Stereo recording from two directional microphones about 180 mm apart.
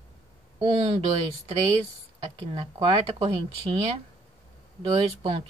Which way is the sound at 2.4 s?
30° right (ahead or behind).